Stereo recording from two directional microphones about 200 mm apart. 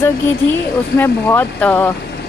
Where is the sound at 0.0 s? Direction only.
10° left (ahead or behind).